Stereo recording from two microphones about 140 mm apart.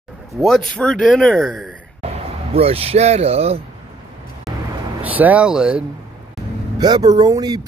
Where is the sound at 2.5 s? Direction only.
45° right (ahead or behind).